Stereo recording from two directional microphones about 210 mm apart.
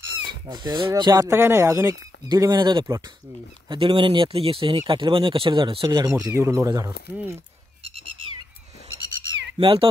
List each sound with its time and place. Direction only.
0.5 s speech: 20° right (ahead or behind)
7.8 s a sound: 25° right (ahead or behind)
9.6 s speech: 25° right (ahead or behind)